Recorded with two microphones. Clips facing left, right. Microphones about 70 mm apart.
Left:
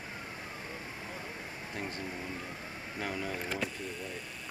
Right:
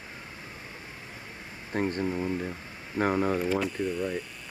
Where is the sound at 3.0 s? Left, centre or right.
Right.